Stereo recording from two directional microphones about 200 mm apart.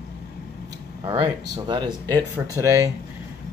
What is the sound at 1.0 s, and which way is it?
Speech, 20° right (ahead or behind).